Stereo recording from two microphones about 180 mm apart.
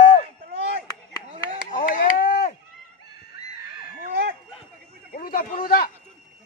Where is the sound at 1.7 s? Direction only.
45° left (ahead or behind).